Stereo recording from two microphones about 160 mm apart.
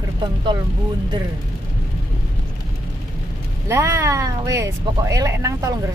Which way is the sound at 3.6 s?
15° right (ahead or behind).